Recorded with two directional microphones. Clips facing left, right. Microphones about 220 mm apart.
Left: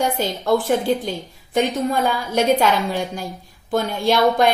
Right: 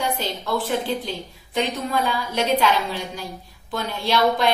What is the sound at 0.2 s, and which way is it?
A woman's voice, 50° left (ahead or behind).